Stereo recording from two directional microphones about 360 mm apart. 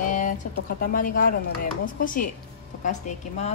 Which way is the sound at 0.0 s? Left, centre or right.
Left.